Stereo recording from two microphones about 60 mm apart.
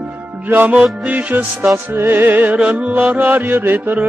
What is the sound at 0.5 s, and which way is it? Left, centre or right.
Music, right.